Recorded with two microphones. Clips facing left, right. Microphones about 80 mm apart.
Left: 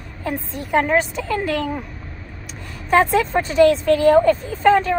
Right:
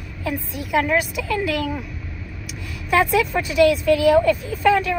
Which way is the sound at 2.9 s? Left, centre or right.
Left.